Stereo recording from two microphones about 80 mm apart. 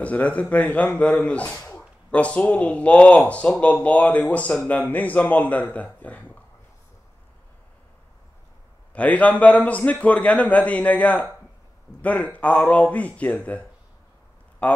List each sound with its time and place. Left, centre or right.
0.0 s a man's voice: centre
8.9 s a man's voice: centre